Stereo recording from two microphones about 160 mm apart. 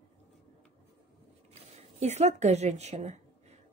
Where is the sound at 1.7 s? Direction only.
45° right (ahead or behind).